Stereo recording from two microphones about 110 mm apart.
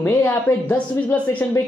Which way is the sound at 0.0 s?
20° left (ahead or behind).